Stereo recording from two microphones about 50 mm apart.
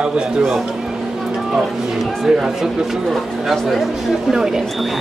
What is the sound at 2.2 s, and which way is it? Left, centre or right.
Speech, centre.